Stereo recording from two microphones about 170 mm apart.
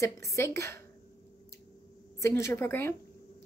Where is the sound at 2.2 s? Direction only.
15° left (ahead or behind).